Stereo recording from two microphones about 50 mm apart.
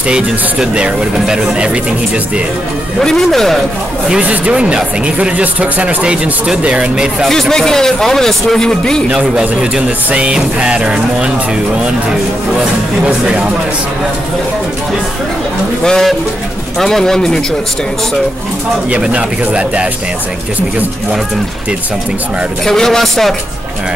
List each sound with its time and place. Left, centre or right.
0.1 s speech: centre
3.0 s a man's voice: centre
4.2 s speech: right
7.2 s a man's voice: centre
9.4 s speech: centre
13.0 s speech: centre
15.8 s a man's voice: centre
18.9 s speech: right
22.7 s a man's voice: centre